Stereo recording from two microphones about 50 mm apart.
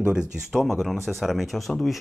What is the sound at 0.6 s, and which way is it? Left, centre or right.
Speech, centre.